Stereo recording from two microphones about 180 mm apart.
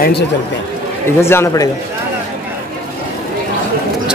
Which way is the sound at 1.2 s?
15° left (ahead or behind).